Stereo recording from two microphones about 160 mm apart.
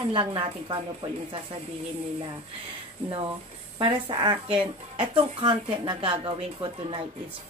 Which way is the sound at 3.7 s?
30° right (ahead or behind).